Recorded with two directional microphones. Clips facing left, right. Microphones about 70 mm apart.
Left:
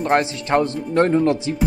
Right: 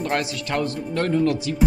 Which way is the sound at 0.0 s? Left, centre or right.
Left.